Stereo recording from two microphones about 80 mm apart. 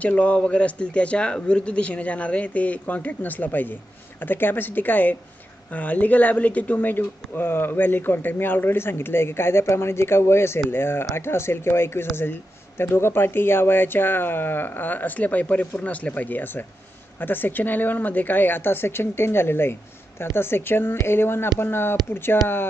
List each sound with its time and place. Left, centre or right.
0.0 s a man's voice: centre